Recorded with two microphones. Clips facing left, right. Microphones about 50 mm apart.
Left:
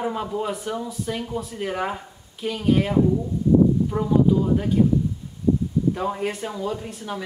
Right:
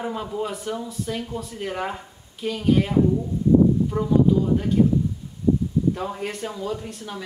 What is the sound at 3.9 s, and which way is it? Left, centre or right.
Speech, left.